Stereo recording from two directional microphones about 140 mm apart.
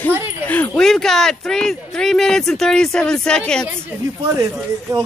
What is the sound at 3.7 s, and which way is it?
Speech, 20° right (ahead or behind).